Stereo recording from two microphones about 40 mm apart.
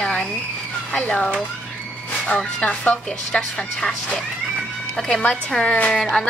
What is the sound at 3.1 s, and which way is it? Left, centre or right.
Speech, centre.